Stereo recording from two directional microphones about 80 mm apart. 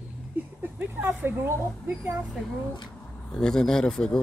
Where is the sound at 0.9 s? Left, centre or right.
Right.